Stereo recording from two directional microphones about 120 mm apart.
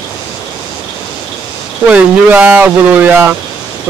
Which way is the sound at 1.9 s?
10° right (ahead or behind).